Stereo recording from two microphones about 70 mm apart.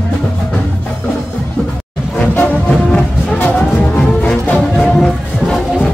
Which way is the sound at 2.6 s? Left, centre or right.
Centre.